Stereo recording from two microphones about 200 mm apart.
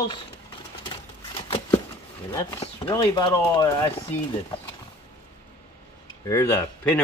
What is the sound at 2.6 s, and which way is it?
Speech, 25° left (ahead or behind).